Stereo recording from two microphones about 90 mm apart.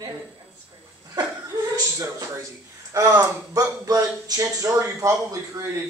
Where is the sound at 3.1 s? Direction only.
45° right (ahead or behind).